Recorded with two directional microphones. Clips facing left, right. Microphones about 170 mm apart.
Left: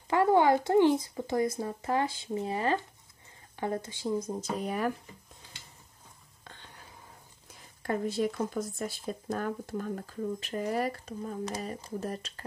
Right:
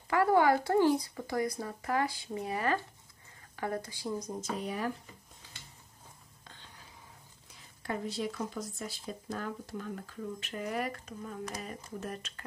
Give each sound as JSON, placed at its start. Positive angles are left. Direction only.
{"t": 0.1, "sound": "speech", "side_deg": 25}
{"t": 4.6, "sound": "speech", "side_deg": 60}
{"t": 7.8, "sound": "speech", "side_deg": 50}